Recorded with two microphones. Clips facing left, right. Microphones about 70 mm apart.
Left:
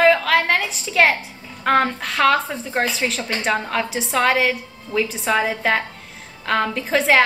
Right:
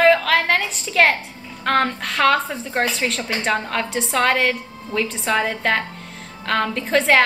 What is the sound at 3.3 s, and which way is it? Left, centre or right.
A woman's voice, centre.